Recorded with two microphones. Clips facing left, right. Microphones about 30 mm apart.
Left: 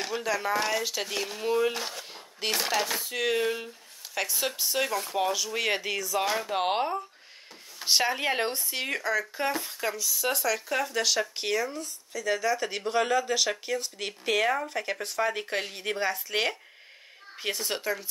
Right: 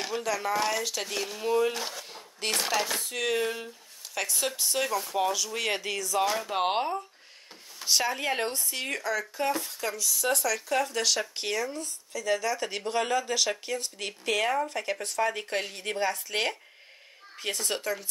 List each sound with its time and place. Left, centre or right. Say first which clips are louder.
0.0 s speech: left 1 dB; centre
6.5 s speech: even; centre
7.8 s speech: left 2 dB; left